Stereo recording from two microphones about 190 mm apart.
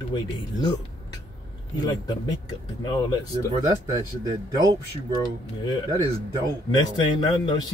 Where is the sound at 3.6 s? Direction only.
15° right (ahead or behind).